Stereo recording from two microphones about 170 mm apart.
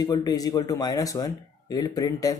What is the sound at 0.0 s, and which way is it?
Speech, 20° left (ahead or behind).